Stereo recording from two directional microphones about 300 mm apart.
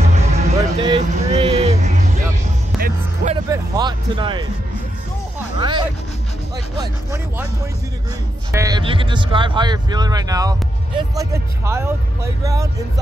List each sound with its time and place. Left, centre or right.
0.0 s music: right
3.4 s vehicle: centre
5.6 s music: centre
6.8 s speech: centre
8.5 s speech: centre